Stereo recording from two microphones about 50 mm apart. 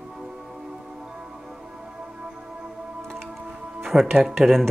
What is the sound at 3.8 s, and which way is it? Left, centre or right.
Speech, centre.